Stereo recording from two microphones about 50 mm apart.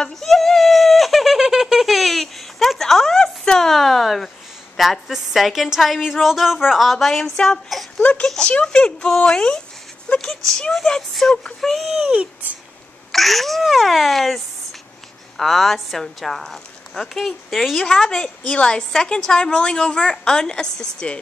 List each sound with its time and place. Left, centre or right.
0.1 s a sound: centre
4.7 s a woman's voice: centre
7.3 s a woman's voice: centre
8.0 s a woman's voice: left; by 11.9 s centre
12.1 s speech: right
13.1 s a woman's voice: centre
17.8 s a woman's voice: centre